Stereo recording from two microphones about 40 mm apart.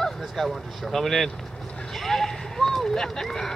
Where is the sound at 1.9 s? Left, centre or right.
Centre.